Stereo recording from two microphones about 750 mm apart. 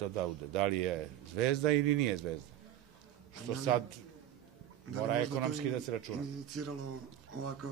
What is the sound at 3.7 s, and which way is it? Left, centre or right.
Speech, right.